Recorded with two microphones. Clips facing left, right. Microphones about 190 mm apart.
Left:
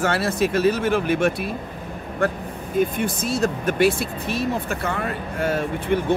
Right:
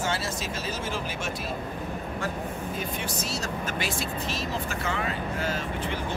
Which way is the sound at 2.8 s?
55° left (ahead or behind).